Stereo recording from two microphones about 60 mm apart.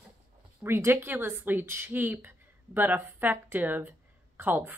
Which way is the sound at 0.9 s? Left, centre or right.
Right.